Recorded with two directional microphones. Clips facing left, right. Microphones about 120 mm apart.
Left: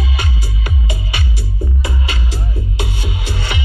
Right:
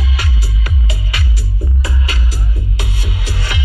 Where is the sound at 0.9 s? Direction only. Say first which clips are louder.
Left 1 dB; 25° left (ahead or behind).